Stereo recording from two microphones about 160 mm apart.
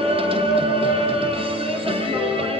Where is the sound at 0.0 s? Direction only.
35° right (ahead or behind).